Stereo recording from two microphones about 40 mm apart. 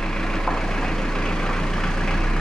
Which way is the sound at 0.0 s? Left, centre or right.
Centre.